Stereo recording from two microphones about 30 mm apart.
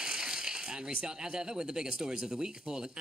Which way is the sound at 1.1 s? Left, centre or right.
Right.